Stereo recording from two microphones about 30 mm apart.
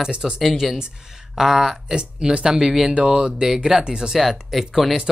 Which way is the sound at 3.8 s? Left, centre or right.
Right.